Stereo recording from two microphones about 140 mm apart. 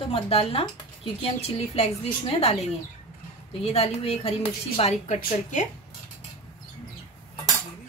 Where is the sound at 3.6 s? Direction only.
45° left (ahead or behind).